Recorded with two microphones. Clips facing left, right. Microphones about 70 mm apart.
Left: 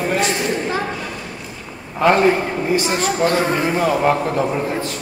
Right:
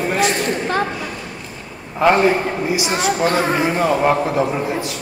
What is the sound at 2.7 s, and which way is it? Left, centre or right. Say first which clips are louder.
A man's voice: left 1 dB; centre.